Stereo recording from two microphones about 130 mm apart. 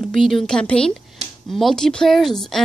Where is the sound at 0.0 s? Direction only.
Centre (ahead or behind).